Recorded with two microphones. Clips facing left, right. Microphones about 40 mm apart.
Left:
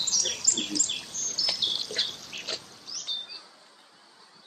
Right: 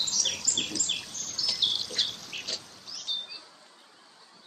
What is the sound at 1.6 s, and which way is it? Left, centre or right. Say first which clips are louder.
Dog: right 3 dB; centre.